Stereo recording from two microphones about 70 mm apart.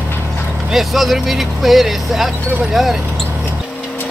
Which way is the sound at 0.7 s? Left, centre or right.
Centre.